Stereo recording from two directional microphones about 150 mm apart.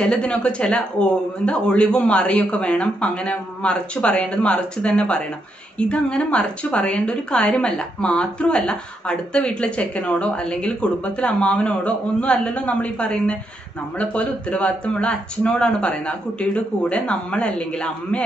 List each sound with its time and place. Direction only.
0.0 s a woman's voice: 5° left (ahead or behind)